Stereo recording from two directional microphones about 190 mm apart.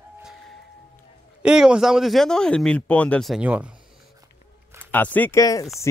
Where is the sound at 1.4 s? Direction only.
5° right (ahead or behind).